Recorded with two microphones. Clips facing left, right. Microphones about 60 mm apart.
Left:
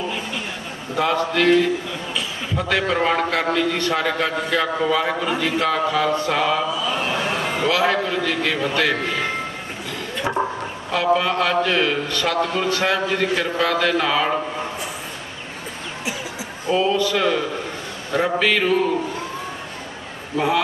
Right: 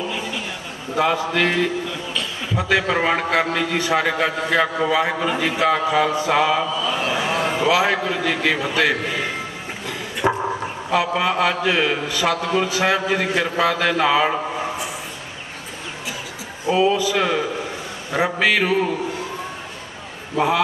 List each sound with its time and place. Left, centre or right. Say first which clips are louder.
0.9 s a man's voice: even; centre
2.5 s a man's voice: right 2 dB; centre
6.8 s a sound: right 1 dB; centre
10.2 s a man's voice: right 3 dB; centre
16.6 s a man's voice: right 1 dB; centre
20.3 s a man's voice: right 1 dB; centre